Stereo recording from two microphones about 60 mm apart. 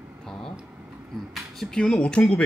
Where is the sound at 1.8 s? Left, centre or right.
Centre.